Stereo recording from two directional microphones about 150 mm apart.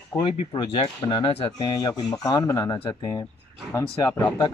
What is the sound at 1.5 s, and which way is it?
Speech, 25° left (ahead or behind).